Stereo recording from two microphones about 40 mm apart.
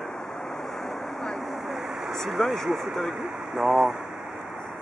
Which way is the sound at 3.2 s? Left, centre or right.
Centre.